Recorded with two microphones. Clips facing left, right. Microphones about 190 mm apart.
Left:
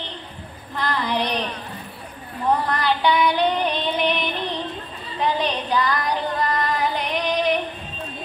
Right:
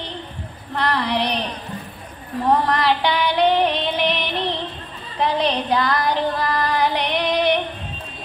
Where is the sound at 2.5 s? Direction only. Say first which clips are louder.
Right 3 dB; 70° right (ahead or behind).